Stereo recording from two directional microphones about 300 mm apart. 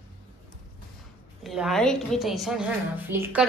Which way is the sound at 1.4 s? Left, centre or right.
Centre.